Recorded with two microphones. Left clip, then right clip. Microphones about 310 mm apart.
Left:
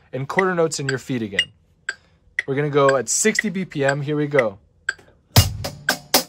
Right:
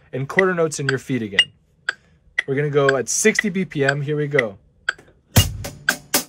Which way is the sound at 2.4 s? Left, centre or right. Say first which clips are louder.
Left 1 dB; centre.